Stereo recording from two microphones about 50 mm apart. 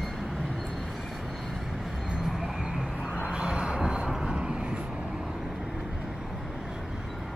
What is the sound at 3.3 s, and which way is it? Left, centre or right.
Vehicle, centre.